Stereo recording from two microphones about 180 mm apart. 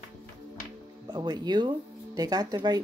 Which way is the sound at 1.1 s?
25° right (ahead or behind).